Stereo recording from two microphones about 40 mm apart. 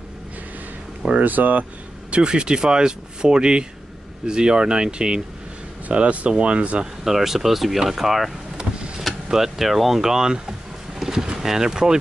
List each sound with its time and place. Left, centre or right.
1.2 s speech: right
2.0 s speech: right
5.9 s speech: right
7.1 s speech: centre
8.5 s power windows: centre
9.3 s speech: centre
11.0 s a sound: centre
11.3 s speech: centre